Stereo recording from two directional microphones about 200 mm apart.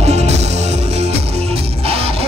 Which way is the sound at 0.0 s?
30° right (ahead or behind).